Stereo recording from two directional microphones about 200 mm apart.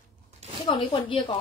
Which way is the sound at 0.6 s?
25° left (ahead or behind).